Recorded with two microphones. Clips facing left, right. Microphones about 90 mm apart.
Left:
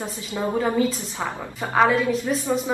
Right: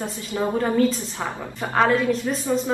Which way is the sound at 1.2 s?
Centre (ahead or behind).